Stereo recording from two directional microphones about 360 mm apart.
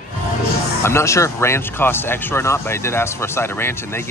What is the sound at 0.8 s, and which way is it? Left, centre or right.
Speech, centre.